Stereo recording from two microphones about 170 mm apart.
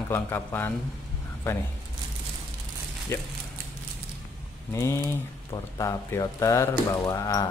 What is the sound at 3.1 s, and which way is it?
Speech, 15° left (ahead or behind).